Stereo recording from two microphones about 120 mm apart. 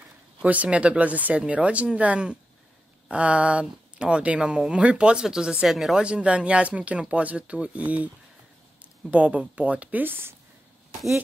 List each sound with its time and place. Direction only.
0.4 s speech: 10° right (ahead or behind)
9.1 s speech: 10° right (ahead or behind)